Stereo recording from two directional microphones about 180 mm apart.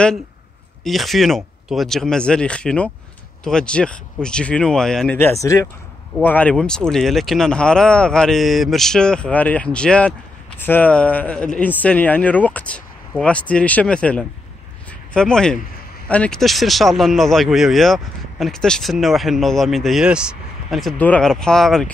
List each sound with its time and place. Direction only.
0.8 s speech: centre (ahead or behind)
5.3 s speech: 15° left (ahead or behind)
14.9 s a sound: 5° left (ahead or behind)
16.1 s speech: 5° left (ahead or behind)